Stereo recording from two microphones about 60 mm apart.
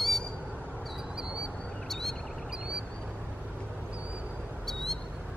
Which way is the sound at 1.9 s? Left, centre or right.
Centre.